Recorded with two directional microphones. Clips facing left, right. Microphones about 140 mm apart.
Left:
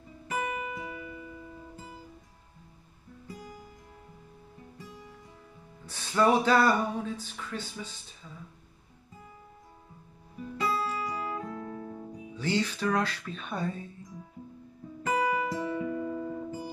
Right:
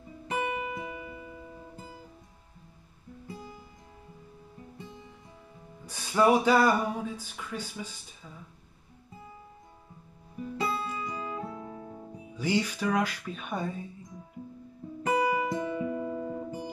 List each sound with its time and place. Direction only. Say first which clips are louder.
0.3 s music: right 2 dB; 25° right (ahead or behind)
5.9 s speech: right 1 dB; 10° right (ahead or behind)
10.6 s music: left 2 dB; 25° right (ahead or behind)
12.4 s speech: right 1 dB; 10° right (ahead or behind)
15.0 s music: right 1 dB; 25° right (ahead or behind)